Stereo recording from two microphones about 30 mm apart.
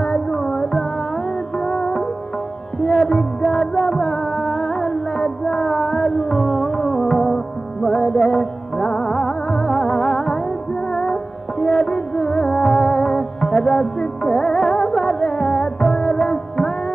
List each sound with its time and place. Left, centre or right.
0.0 s carnatic music: centre
1.6 s music: centre
3.1 s music: centre